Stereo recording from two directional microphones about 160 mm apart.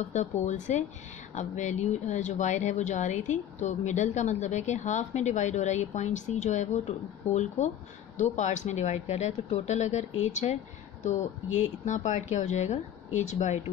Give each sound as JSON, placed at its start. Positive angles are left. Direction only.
{"t": 0.1, "sound": "speech", "side_deg": 50}